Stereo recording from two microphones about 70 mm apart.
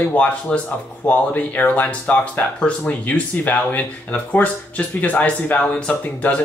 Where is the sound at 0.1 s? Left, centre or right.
Centre.